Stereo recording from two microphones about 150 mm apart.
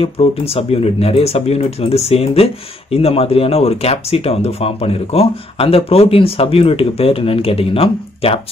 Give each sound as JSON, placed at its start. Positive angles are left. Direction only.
{"t": 0.0, "sound": "speech", "side_deg": 40}